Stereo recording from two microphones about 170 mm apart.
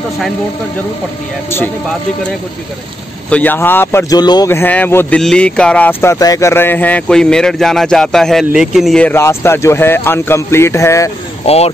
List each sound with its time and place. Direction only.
3.3 s speech: 10° left (ahead or behind)
11.4 s speech: 35° left (ahead or behind)